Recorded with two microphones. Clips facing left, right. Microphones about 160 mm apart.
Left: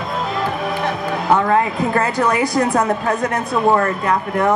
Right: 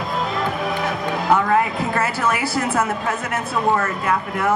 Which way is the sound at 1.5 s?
35° left (ahead or behind).